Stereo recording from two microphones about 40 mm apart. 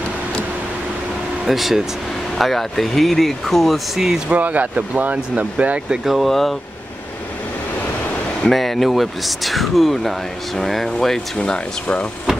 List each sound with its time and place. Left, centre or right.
1.4 s speech: centre
4.3 s speech: right
6.0 s speech: centre
8.5 s speech: centre
11.3 s speech: left